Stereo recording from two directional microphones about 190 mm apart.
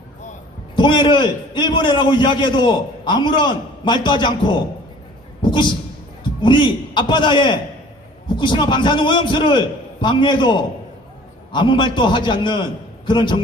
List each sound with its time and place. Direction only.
0.7 s a man's voice: 25° left (ahead or behind)
5.4 s a sound: 25° left (ahead or behind)
6.4 s a man's voice: 25° left (ahead or behind)